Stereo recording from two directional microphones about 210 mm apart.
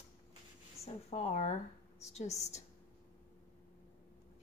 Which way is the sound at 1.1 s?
35° left (ahead or behind).